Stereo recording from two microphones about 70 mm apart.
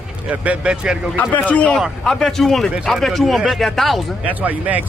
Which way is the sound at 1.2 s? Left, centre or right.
Left.